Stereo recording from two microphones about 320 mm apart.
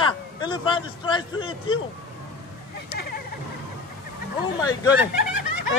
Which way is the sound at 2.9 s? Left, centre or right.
Left.